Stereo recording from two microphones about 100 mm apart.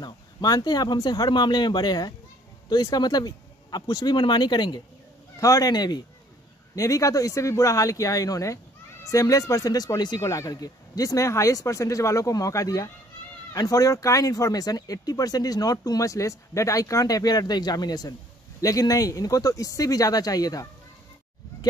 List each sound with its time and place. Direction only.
0.0 s speech: 40° left (ahead or behind)